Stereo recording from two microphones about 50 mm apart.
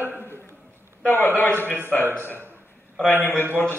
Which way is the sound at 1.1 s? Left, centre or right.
Left.